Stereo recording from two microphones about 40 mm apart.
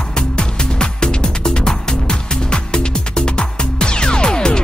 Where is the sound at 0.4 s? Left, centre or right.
Left.